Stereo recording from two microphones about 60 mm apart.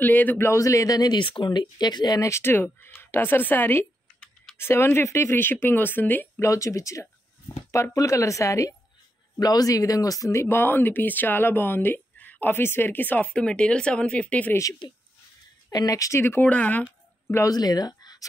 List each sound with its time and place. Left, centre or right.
0.0 s speech: left
0.6 s a woman's voice: left
2.3 s speech: left
6.4 s a woman's voice: left
9.4 s speech: left
10.3 s speech: left
12.5 s speech: left
13.3 s speech: centre
15.7 s speech: left
16.2 s speech: left
16.4 s speech: left
17.5 s speech: left